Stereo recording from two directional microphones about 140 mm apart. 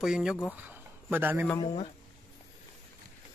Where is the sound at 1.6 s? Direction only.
45° left (ahead or behind).